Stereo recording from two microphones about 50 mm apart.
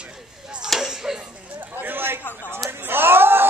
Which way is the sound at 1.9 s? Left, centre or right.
Right.